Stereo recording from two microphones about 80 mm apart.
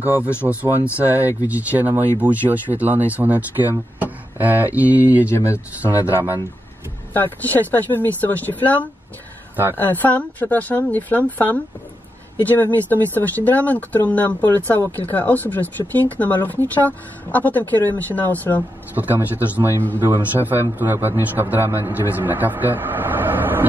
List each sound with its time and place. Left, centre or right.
0.0 s a man's voice: right
5.2 s speech: left
7.2 s speech: left
18.9 s a man's voice: right